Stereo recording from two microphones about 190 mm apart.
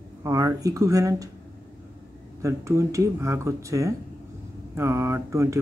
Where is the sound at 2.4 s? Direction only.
15° right (ahead or behind).